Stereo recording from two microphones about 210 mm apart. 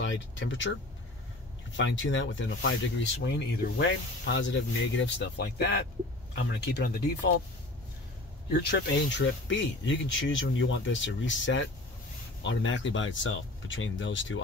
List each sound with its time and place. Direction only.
0.0 s speech: 65° left (ahead or behind)
8.5 s speech: 50° left (ahead or behind)